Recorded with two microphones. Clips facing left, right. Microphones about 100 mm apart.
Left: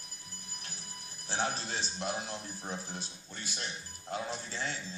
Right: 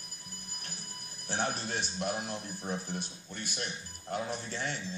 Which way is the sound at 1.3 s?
55° right (ahead or behind).